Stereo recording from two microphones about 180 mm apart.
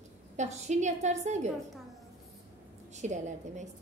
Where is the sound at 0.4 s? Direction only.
40° right (ahead or behind).